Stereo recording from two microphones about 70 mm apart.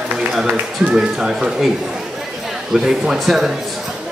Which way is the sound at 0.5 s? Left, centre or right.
Centre.